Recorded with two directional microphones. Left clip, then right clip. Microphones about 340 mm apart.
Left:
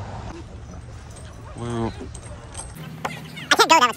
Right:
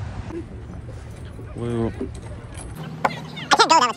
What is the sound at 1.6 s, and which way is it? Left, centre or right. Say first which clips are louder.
Dog: right 2 dB; centre.